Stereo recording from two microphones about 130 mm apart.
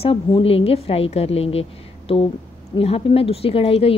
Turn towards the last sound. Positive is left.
turn(degrees=50)  # may be behind; listen again after turning